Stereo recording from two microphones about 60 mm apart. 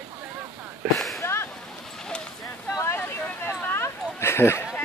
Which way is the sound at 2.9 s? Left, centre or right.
Left.